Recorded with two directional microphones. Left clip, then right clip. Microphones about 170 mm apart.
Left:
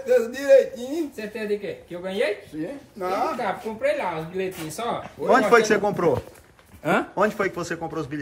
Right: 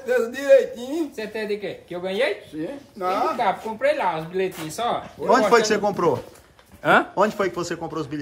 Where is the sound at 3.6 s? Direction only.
20° right (ahead or behind).